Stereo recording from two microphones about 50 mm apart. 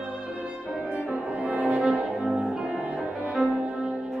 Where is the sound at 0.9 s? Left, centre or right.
Right.